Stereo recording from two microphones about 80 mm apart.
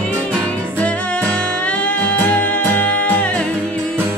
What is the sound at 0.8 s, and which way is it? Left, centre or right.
Music, centre.